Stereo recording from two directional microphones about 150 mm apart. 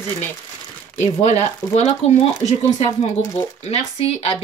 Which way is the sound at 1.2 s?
45° left (ahead or behind).